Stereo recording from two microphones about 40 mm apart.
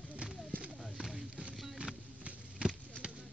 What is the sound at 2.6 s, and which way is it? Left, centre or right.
Basketball bounce, right.